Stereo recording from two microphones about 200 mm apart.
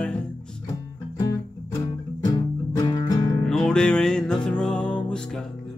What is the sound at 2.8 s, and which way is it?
Music, 20° left (ahead or behind).